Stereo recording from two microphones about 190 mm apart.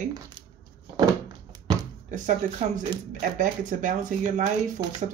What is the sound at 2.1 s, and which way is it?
Speech, 40° right (ahead or behind).